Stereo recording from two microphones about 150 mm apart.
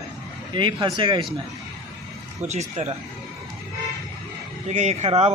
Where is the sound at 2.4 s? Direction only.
50° right (ahead or behind).